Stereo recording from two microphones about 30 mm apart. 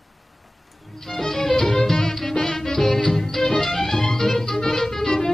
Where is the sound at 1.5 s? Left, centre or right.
Left.